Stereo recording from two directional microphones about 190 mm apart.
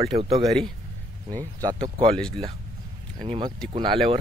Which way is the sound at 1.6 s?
20° right (ahead or behind).